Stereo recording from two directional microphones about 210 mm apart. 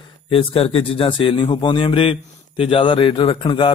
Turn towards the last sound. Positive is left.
turn(degrees=25)  # may be behind; listen again after turning